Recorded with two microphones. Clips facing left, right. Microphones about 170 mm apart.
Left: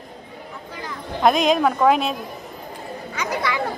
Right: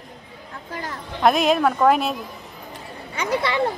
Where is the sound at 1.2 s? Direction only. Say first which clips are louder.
Even; 5° right (ahead or behind).